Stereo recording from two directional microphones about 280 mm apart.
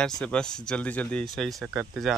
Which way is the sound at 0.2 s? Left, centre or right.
Centre.